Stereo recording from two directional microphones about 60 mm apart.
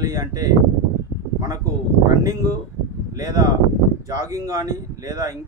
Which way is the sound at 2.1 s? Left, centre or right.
Right.